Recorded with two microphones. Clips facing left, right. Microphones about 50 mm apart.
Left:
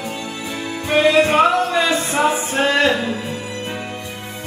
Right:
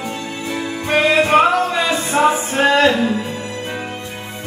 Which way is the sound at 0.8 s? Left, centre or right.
Right.